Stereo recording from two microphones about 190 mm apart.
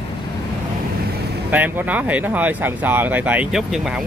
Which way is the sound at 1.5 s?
10° right (ahead or behind).